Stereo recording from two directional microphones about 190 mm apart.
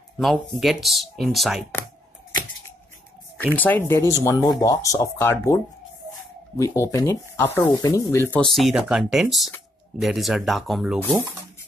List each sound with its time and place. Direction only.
0.2 s speech: centre (ahead or behind)
3.5 s speech: 10° left (ahead or behind)